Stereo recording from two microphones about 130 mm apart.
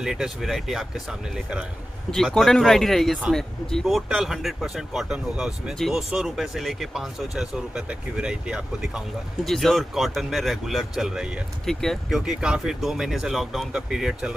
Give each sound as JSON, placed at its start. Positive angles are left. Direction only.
{"t": 0.0, "sound": "speech", "side_deg": -5}
{"t": 2.0, "sound": "speech", "side_deg": 5}